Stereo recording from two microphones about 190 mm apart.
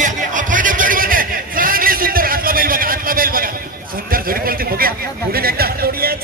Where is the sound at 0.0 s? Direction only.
40° right (ahead or behind).